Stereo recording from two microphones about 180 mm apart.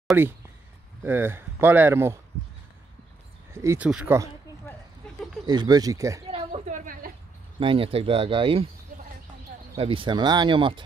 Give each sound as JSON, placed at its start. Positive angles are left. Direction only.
{"t": 0.1, "sound": "speech", "side_deg": -10}
{"t": 3.5, "sound": "speech", "side_deg": -10}
{"t": 5.0, "sound": "a sound", "side_deg": 5}
{"t": 5.5, "sound": "speech", "side_deg": -20}
{"t": 6.7, "sound": "a sound", "side_deg": -45}
{"t": 7.6, "sound": "speech", "side_deg": -30}
{"t": 9.8, "sound": "speech", "side_deg": -30}